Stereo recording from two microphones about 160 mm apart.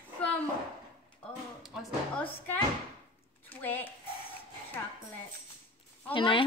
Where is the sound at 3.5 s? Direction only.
10° left (ahead or behind).